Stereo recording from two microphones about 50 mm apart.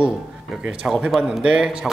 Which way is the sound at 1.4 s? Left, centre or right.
Centre.